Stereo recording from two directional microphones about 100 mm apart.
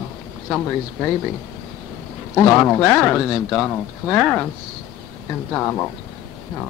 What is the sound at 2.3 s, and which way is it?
Speech, 20° left (ahead or behind).